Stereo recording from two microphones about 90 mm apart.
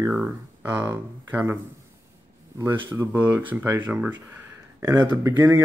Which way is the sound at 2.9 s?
20° right (ahead or behind).